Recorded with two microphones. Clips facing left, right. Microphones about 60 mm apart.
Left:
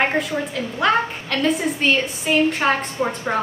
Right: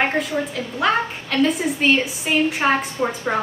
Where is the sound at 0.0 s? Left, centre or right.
Centre.